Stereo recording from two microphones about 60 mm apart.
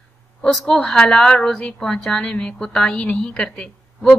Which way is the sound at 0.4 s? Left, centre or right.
Centre.